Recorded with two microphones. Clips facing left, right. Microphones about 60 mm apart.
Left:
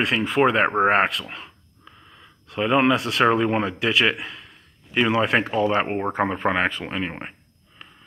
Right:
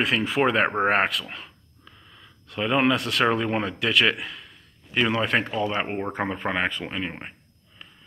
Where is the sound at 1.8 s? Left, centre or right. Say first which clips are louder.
Left 2 dB; centre.